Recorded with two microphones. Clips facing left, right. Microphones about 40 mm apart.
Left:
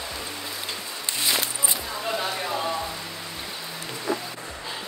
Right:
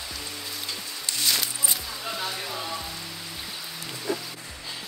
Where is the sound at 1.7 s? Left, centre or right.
Centre.